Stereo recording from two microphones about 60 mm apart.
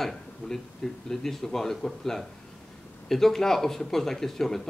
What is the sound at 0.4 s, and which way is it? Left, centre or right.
Speech, left.